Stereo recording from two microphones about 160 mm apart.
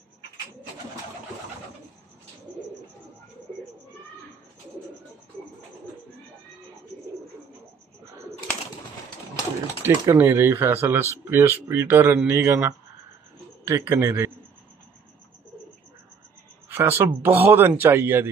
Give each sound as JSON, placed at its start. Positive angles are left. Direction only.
{"t": 9.8, "sound": "speech", "side_deg": -15}
{"t": 16.6, "sound": "speech", "side_deg": -15}